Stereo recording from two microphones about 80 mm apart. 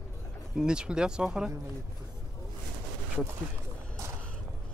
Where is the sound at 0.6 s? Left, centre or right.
Centre.